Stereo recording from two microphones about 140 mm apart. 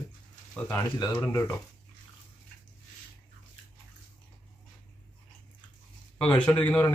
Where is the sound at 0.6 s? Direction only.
25° left (ahead or behind).